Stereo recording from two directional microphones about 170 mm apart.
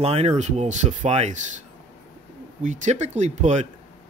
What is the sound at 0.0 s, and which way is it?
Speech, 40° right (ahead or behind).